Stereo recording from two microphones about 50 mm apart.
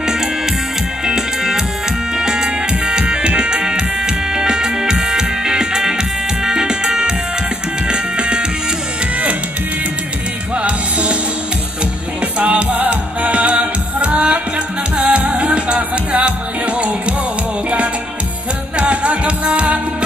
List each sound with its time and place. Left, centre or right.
1.0 s music: centre
10.5 s music: right
12.4 s music: right
18.8 s music: right